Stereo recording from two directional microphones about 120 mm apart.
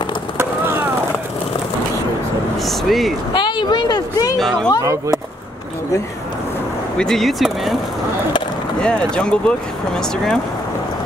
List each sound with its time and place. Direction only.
2.6 s speech: centre (ahead or behind)
3.3 s speech: 40° left (ahead or behind)
4.4 s speech: 5° left (ahead or behind)
4.8 s speech: 25° right (ahead or behind)
7.0 s speech: 5° left (ahead or behind)
8.8 s speech: 10° left (ahead or behind)